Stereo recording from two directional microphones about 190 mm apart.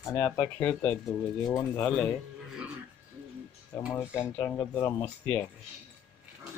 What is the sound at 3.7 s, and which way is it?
Speech, 10° left (ahead or behind).